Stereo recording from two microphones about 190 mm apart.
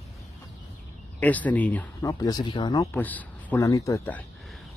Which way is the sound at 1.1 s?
10° left (ahead or behind).